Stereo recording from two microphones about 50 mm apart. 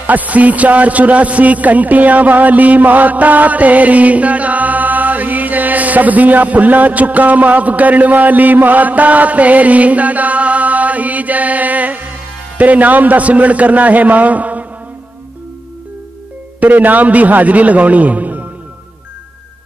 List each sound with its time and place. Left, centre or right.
0.0 s a man's voice: right
16.5 s a man's voice: right